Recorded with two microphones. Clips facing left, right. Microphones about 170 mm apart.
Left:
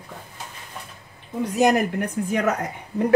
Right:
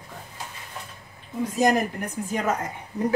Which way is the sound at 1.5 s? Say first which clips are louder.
Left 3 dB; 70° left (ahead or behind).